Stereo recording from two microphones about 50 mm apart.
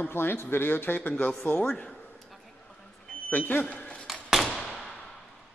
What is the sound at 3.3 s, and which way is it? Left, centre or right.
Speech, left.